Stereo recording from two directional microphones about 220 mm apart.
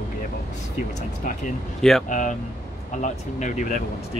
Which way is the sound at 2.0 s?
35° left (ahead or behind).